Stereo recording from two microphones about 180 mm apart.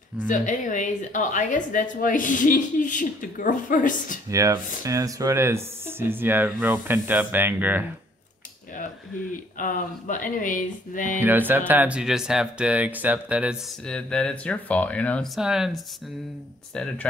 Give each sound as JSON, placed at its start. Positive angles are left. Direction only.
{"t": 0.3, "sound": "a woman's voice", "side_deg": 45}
{"t": 4.3, "sound": "speech", "side_deg": -20}
{"t": 9.6, "sound": "a woman's voice", "side_deg": 50}
{"t": 11.1, "sound": "speech", "side_deg": -10}
{"t": 13.8, "sound": "speech", "side_deg": 5}